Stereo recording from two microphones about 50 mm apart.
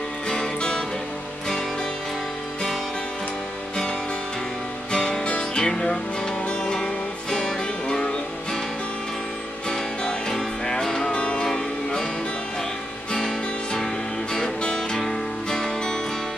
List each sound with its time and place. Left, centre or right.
0.3 s music: centre
4.9 s music: centre
9.7 s music: centre
14.3 s music: centre